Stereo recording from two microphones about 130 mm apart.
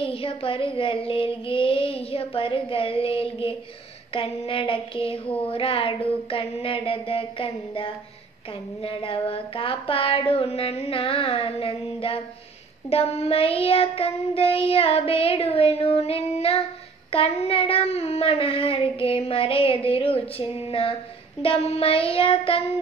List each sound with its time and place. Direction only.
0.0 s child singing: 45° left (ahead or behind)